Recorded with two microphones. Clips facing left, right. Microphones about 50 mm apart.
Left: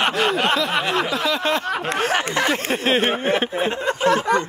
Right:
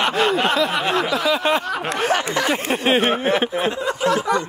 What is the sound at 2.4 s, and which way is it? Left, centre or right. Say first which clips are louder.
Speech: even; right.